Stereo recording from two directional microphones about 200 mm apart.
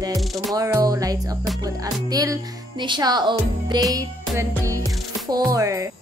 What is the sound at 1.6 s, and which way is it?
Speech, 20° right (ahead or behind).